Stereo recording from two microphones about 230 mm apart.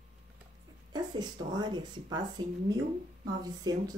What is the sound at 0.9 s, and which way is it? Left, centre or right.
Speech, centre.